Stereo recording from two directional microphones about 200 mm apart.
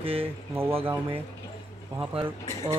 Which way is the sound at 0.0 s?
30° right (ahead or behind).